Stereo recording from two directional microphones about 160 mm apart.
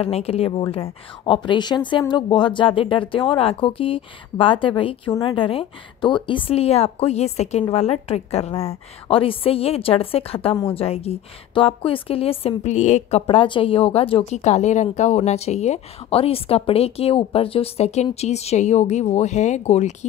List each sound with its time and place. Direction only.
0.0 s a woman's voice: 40° left (ahead or behind)
13.3 s a woman's voice: 35° left (ahead or behind)